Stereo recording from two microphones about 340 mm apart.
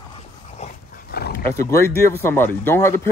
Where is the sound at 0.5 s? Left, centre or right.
Left.